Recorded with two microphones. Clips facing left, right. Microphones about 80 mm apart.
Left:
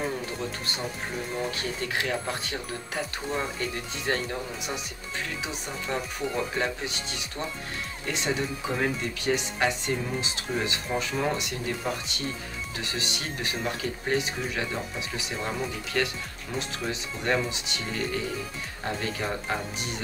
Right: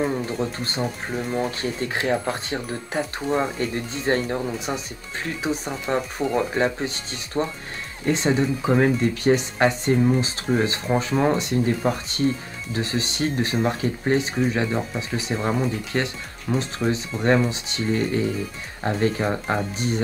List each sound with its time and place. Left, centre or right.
0.4 s speech: right
7.3 s speech: right
8.0 s speech: right